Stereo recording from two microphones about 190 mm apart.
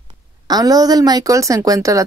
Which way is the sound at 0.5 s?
20° right (ahead or behind).